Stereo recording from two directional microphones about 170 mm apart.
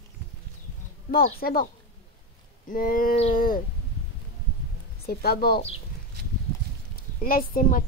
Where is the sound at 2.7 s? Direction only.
55° left (ahead or behind).